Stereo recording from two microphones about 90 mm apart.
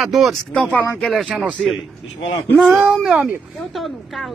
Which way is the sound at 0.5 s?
15° left (ahead or behind).